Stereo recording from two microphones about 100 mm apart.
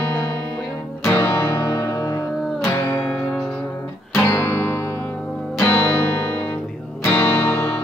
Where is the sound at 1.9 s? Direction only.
35° left (ahead or behind).